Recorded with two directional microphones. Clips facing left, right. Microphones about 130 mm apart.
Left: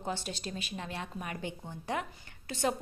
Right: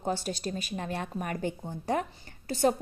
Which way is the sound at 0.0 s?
40° right (ahead or behind).